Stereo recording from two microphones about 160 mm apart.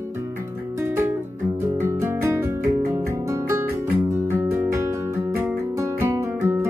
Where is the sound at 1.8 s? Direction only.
15° right (ahead or behind).